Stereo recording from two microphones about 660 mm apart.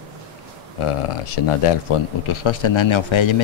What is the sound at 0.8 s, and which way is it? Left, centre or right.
Speech, left.